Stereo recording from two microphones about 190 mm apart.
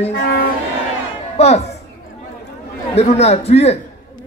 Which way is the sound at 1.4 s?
35° left (ahead or behind).